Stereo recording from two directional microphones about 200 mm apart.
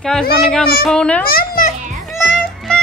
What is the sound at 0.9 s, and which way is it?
Speech, 5° left (ahead or behind).